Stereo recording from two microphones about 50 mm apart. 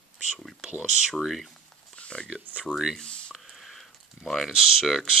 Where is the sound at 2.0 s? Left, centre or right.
Left.